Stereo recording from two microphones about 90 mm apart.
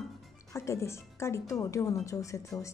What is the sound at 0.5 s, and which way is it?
Speech, 35° left (ahead or behind).